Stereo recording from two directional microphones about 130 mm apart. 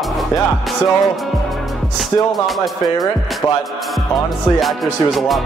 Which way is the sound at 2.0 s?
Centre (ahead or behind).